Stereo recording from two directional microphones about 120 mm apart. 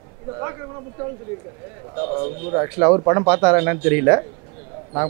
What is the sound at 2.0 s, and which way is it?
Speech, 20° right (ahead or behind).